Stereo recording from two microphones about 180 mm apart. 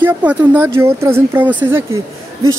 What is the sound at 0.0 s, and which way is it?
Speech, 10° right (ahead or behind).